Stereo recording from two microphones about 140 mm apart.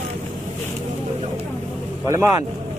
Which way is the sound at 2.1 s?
20° right (ahead or behind).